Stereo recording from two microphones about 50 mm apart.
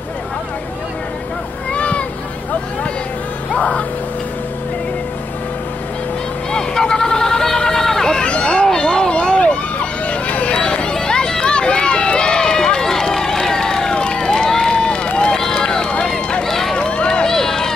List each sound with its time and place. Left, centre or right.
1.7 s boat: left
3.5 s music: left
6.5 s a sound: centre
15.5 s run: centre
16.8 s run: left